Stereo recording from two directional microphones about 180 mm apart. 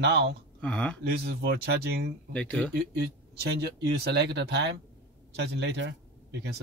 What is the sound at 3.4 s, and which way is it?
Speech, 65° right (ahead or behind).